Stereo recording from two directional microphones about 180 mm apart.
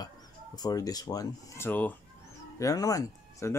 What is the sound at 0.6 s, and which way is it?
Speech, 20° left (ahead or behind).